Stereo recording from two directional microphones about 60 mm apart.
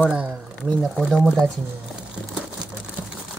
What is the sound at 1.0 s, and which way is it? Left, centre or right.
Speech, centre.